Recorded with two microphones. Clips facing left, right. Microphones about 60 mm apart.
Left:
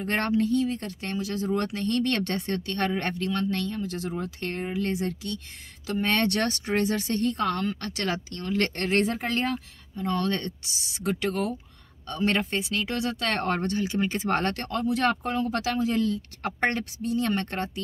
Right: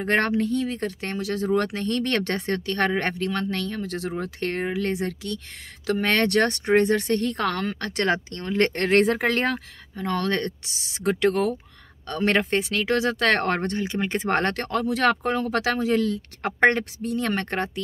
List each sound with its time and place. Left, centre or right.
0.0 s speech: right
6.6 s speech: right